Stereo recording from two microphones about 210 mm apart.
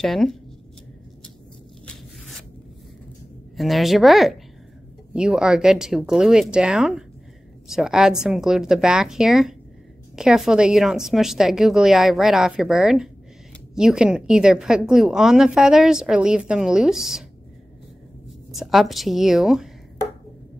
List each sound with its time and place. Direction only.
0.0 s a woman's voice: centre (ahead or behind)
3.5 s a woman's voice: centre (ahead or behind)
18.6 s a woman's voice: centre (ahead or behind)